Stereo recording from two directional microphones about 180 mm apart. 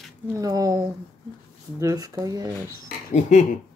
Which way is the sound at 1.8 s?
20° right (ahead or behind).